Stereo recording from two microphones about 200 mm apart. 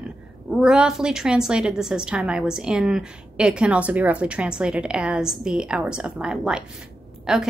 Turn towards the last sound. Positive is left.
turn(degrees=-5)  # may be behind; listen again after turning